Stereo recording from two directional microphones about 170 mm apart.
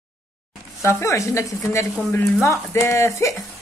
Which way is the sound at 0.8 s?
15° left (ahead or behind).